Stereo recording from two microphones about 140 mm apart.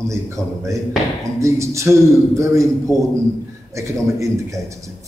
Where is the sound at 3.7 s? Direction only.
20° right (ahead or behind).